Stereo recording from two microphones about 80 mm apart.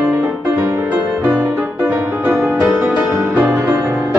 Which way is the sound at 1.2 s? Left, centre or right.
Right.